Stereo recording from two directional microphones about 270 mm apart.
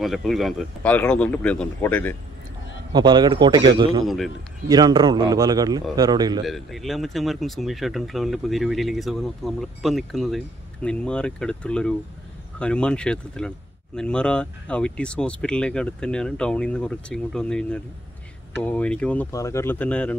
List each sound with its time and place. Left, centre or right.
0.0 s speech: centre
2.9 s a man's voice: centre
4.0 s speech: centre
4.6 s a man's voice: centre
6.4 s speech: centre